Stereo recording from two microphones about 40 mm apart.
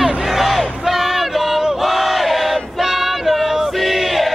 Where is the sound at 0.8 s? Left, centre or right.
Centre.